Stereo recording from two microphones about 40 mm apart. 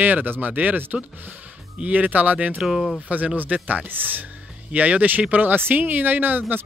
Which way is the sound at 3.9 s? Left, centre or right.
Right.